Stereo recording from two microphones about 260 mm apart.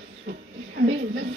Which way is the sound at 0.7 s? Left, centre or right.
Right.